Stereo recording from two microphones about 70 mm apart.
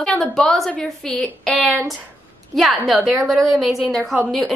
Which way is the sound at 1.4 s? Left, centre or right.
Centre.